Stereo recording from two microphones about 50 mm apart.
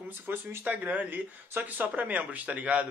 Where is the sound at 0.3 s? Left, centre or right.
Right.